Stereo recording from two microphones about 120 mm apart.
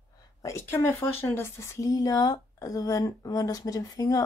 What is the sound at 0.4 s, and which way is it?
Speech, 20° left (ahead or behind).